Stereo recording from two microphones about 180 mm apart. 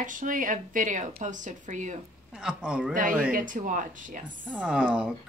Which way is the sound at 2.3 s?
5° right (ahead or behind).